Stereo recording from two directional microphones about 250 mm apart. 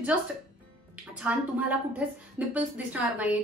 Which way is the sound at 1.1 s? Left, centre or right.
Centre.